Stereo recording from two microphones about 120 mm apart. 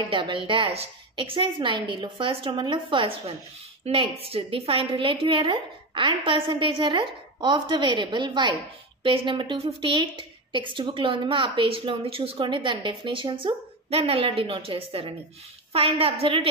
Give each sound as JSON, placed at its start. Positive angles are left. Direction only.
{"t": 0.1, "sound": "a woman's voice", "side_deg": -45}